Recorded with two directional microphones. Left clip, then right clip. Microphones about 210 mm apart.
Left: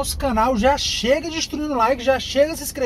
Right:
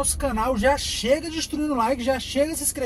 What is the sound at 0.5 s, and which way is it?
Speech, 15° left (ahead or behind).